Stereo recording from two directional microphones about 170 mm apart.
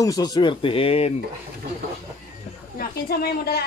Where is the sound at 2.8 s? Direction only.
65° left (ahead or behind).